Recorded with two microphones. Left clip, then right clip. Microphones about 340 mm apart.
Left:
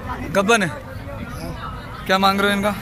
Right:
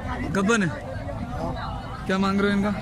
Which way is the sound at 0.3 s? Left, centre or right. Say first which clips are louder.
Left 7 dB; centre.